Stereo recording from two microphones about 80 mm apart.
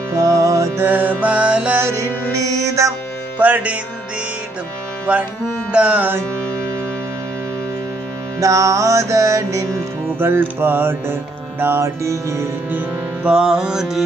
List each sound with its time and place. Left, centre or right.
0.1 s music: right
0.7 s music: right
1.8 s music: right
3.3 s music: right
5.7 s mantra: centre
8.4 s music: right
10.0 s music: right
13.2 s mantra: centre